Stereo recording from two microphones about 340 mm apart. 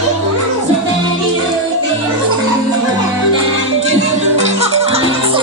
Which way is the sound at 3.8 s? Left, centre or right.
Centre.